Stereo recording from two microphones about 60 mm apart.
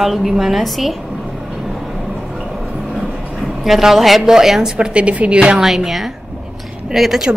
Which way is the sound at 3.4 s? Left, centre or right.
Centre.